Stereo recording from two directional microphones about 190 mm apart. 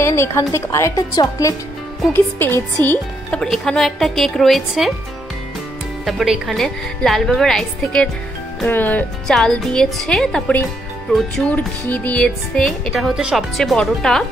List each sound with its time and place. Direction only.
0.0 s a woman's voice: 15° left (ahead or behind)
6.0 s speech: centre (ahead or behind)